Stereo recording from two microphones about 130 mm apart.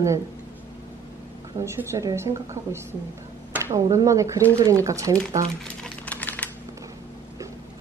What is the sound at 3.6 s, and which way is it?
A woman's voice, 25° right (ahead or behind).